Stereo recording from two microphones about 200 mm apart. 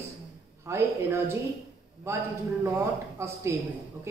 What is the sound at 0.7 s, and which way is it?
A woman's voice, 10° right (ahead or behind).